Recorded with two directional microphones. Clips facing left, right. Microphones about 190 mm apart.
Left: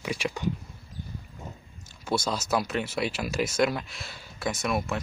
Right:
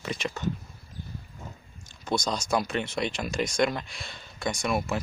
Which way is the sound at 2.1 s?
5° left (ahead or behind).